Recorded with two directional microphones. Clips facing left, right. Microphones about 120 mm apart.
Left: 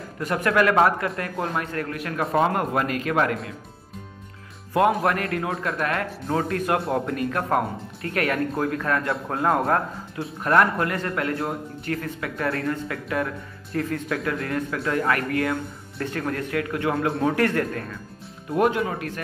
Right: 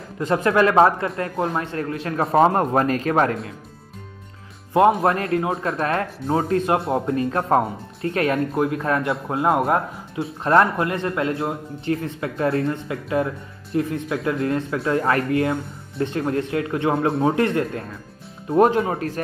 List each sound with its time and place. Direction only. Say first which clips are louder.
0.2 s speech: right 3 dB; 25° right (ahead or behind)
4.7 s speech: right 4 dB; 30° right (ahead or behind)
18.5 s speech: right 5 dB; 30° right (ahead or behind)